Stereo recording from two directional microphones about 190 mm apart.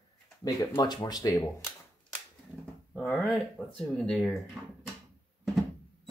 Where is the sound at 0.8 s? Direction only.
20° left (ahead or behind).